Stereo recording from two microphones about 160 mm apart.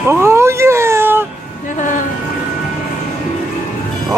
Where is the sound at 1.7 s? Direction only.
50° left (ahead or behind).